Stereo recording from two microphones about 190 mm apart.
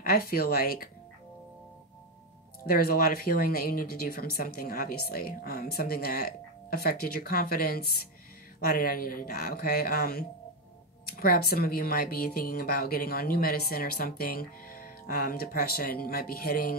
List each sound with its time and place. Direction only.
0.0 s speech: 50° left (ahead or behind)
2.6 s speech: 50° left (ahead or behind)